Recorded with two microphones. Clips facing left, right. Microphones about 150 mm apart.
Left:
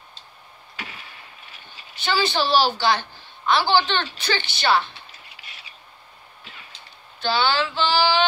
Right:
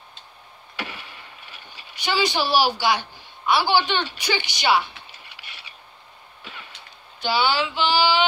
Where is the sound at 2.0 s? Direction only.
15° right (ahead or behind).